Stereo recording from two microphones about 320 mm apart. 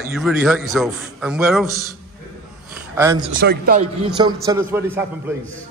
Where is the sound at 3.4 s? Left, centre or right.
Right.